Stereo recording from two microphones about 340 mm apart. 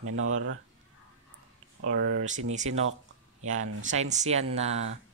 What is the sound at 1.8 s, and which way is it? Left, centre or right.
Speech, right.